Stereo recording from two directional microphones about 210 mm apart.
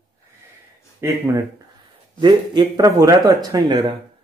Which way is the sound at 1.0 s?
15° right (ahead or behind).